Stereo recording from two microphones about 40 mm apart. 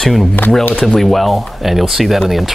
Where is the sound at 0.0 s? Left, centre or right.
Centre.